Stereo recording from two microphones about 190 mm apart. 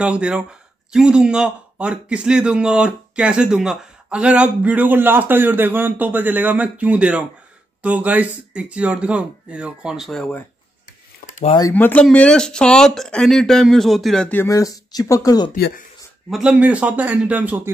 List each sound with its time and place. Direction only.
0.0 s speech: 5° right (ahead or behind)
11.7 s speech: 10° left (ahead or behind)
15.5 s speech: 50° left (ahead or behind)
16.3 s a man's voice: 5° right (ahead or behind)